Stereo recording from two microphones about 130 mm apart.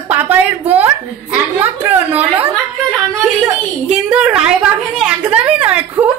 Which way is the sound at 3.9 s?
10° right (ahead or behind).